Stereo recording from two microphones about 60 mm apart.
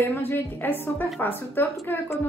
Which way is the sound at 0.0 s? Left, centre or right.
Left.